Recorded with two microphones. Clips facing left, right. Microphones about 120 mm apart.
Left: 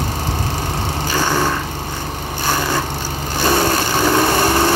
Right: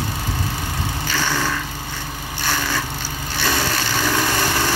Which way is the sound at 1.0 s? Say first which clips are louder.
Left 5 dB; 40° left (ahead or behind).